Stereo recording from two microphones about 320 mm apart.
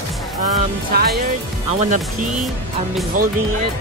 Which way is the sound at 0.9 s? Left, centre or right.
Right.